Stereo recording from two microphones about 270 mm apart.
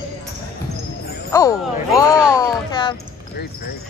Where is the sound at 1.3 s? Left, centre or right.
Centre.